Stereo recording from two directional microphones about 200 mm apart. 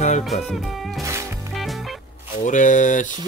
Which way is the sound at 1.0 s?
15° right (ahead or behind).